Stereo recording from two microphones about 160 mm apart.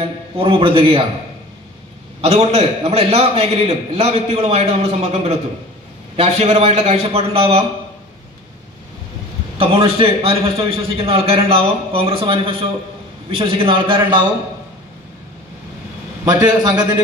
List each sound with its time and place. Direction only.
0.4 s a man's voice: 35° right (ahead or behind)
2.2 s a man's voice: 40° right (ahead or behind)
9.6 s a man's voice: 35° right (ahead or behind)
16.3 s a man's voice: 25° right (ahead or behind)